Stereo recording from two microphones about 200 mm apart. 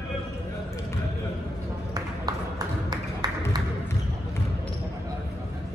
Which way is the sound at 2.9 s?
20° right (ahead or behind).